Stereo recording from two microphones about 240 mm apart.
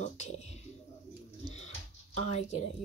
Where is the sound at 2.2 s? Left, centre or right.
Left.